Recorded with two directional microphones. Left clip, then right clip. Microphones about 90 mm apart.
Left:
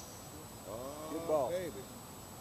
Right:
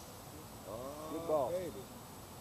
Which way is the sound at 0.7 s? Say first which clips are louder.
Left 1 dB; 25° left (ahead or behind).